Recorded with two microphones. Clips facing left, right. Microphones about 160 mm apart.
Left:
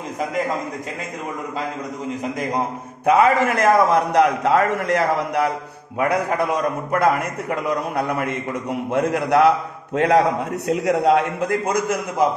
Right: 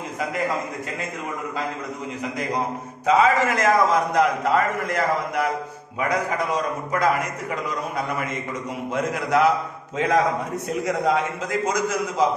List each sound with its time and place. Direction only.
3.1 s a man's voice: 55° left (ahead or behind); by 5.0 s 75° left (ahead or behind)
5.9 s a man's voice: 60° left (ahead or behind)